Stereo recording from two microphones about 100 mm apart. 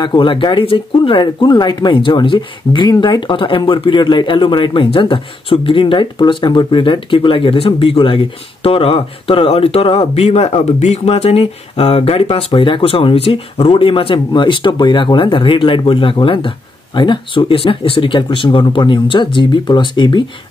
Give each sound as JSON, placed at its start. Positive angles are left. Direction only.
{"t": 0.0, "sound": "speech", "side_deg": 50}